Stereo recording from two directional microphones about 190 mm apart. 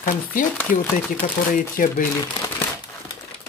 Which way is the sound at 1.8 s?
50° left (ahead or behind).